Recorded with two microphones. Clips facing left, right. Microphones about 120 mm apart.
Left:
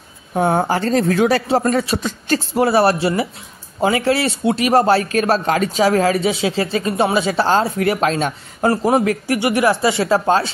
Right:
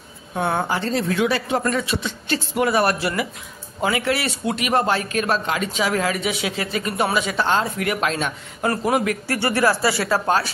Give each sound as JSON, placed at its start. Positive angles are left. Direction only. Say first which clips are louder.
{"t": 0.3, "sound": "speech", "louder": "left 6 dB", "side_deg": 35}
{"t": 9.3, "sound": "speech", "louder": "left 3 dB", "side_deg": 15}